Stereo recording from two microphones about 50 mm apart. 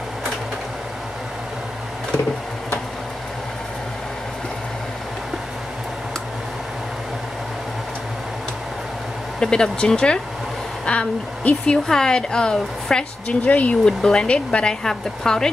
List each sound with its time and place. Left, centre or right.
9.4 s speech: centre
13.5 s speech: left
13.8 s speech: centre